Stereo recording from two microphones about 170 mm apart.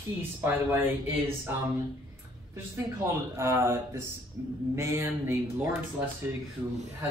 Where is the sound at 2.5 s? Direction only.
15° right (ahead or behind).